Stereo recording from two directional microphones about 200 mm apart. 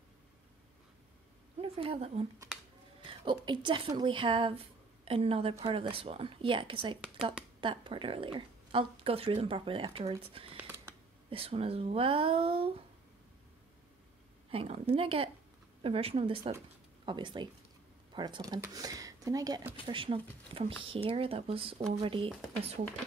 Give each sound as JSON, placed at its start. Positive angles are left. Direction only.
{"t": 1.6, "sound": "a woman's voice", "side_deg": -30}
{"t": 10.6, "sound": "a sound", "side_deg": -10}
{"t": 11.2, "sound": "speech", "side_deg": -30}
{"t": 14.5, "sound": "speech", "side_deg": -30}